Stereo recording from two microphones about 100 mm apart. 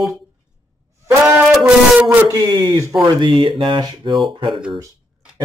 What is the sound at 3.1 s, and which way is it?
Speech, 50° right (ahead or behind).